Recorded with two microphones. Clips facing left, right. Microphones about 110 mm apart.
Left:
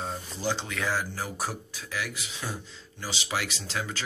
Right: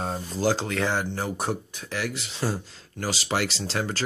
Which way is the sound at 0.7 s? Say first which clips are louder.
Right 4 dB; 25° right (ahead or behind).